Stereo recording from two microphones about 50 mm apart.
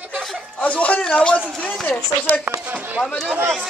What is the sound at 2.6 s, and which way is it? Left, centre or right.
Speech, right.